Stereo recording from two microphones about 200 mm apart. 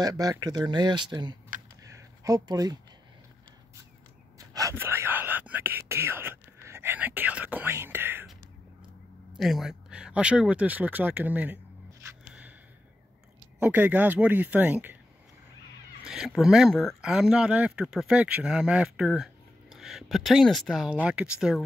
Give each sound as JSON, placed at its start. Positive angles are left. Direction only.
{"t": 0.0, "sound": "speech", "side_deg": -20}
{"t": 1.9, "sound": "a sound", "side_deg": -15}
{"t": 4.4, "sound": "speech", "side_deg": -15}
{"t": 9.4, "sound": "speech", "side_deg": 0}
{"t": 12.1, "sound": "a sound", "side_deg": -10}
{"t": 13.6, "sound": "speech", "side_deg": -10}
{"t": 16.1, "sound": "speech", "side_deg": 0}